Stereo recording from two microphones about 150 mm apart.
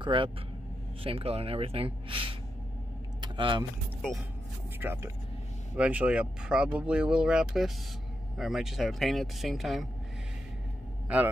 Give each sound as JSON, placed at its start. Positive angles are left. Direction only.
{"t": 0.0, "sound": "speech", "side_deg": -35}
{"t": 3.2, "sound": "vehicle", "side_deg": -30}
{"t": 4.7, "sound": "speech", "side_deg": -15}